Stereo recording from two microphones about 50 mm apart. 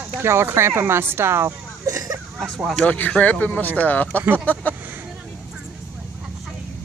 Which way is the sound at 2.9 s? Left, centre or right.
Left.